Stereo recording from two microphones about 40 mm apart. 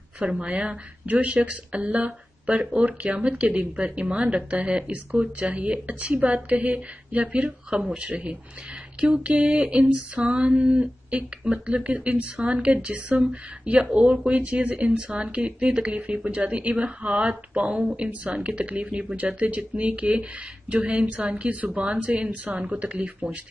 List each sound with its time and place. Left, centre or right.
0.4 s a woman's voice: right
9.8 s a woman's voice: right